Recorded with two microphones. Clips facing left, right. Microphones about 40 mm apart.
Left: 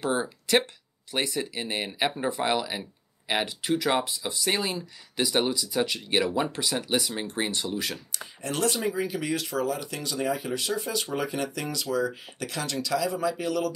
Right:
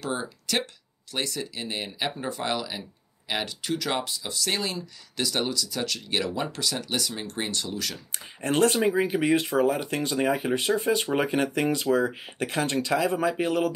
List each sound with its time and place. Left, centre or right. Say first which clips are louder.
0.0 s speech: left 3 dB; centre
8.4 s speech: right 6 dB; right